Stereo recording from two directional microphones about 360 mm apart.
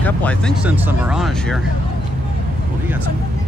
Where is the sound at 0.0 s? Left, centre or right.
Centre.